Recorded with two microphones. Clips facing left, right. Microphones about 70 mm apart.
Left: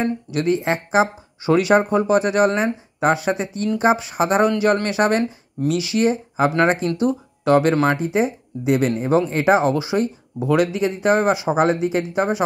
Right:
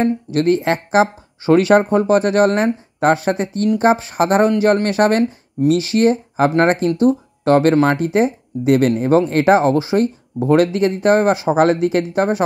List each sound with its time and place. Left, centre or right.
0.0 s speech: right
1.4 s speech: right